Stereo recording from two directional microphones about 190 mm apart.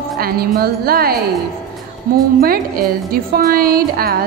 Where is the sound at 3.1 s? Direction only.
50° right (ahead or behind).